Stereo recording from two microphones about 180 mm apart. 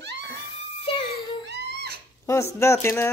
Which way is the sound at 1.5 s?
65° right (ahead or behind).